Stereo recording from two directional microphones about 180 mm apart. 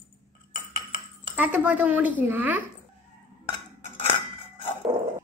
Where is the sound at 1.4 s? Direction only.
10° right (ahead or behind).